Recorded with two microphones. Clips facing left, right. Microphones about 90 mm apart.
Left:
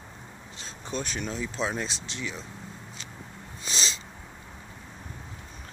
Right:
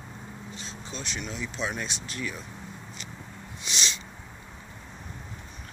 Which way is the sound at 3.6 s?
35° left (ahead or behind).